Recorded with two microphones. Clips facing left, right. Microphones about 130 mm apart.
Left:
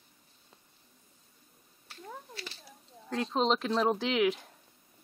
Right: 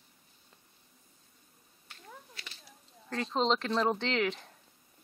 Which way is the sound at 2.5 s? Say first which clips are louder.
Left 4 dB; 5° left (ahead or behind).